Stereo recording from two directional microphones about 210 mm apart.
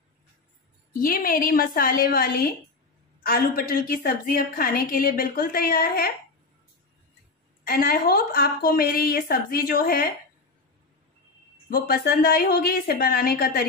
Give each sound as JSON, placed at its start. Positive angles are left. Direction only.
{"t": 0.9, "sound": "a woman's voice", "side_deg": 45}
{"t": 7.6, "sound": "a woman's voice", "side_deg": 45}
{"t": 11.9, "sound": "a woman's voice", "side_deg": 45}